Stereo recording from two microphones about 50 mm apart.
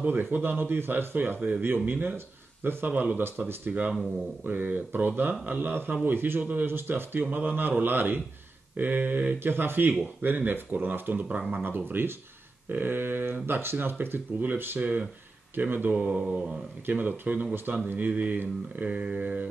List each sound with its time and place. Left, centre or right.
0.0 s speech: right
2.9 s speech: right
11.6 s speech: right
15.9 s mantra: right
16.8 s speech: right